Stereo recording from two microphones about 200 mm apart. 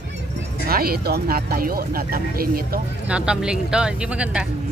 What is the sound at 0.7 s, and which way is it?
Music, 50° right (ahead or behind).